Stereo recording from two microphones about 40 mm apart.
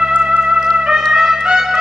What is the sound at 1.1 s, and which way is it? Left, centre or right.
Music, centre.